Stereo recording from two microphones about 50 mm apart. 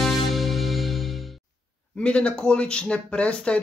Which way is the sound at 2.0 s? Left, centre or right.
Left.